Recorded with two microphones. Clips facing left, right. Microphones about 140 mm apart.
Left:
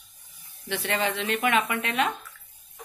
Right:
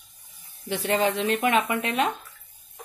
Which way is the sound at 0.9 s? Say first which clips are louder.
Right 4 dB; 40° right (ahead or behind).